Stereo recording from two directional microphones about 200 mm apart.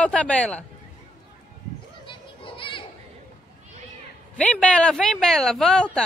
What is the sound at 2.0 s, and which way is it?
Children playing, 25° left (ahead or behind).